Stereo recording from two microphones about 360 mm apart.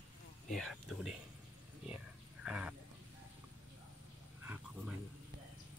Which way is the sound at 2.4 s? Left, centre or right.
Centre.